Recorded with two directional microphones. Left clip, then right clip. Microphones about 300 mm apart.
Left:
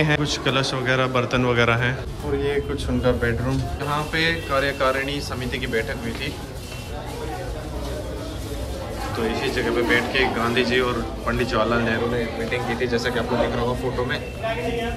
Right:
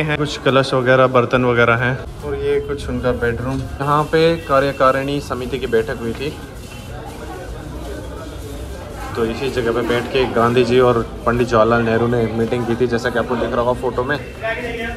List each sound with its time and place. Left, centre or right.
0.0 s speech: centre
3.0 s speech: centre
9.2 s speech: centre